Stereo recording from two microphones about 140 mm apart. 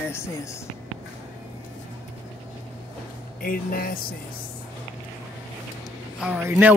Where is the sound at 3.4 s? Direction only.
90° left.